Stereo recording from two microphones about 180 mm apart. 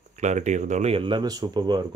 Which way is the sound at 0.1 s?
40° right (ahead or behind).